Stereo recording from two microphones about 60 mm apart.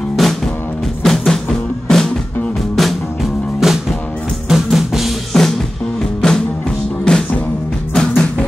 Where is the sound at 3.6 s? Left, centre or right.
Centre.